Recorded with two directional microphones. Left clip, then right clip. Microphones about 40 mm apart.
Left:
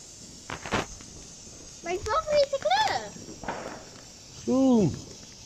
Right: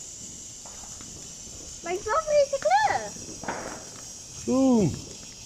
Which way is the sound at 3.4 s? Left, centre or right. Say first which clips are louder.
Right 1 dB; right.